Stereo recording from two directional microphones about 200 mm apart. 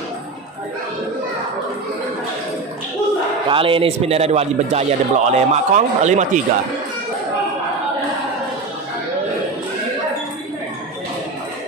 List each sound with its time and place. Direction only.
3.4 s a man's voice: 25° right (ahead or behind)